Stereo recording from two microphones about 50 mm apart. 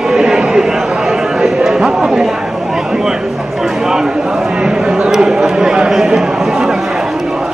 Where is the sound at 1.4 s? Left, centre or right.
Centre.